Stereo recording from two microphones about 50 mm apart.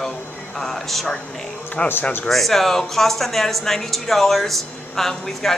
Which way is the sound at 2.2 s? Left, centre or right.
Centre.